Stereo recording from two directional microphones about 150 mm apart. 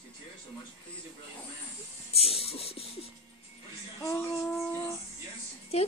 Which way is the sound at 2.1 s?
40° left (ahead or behind).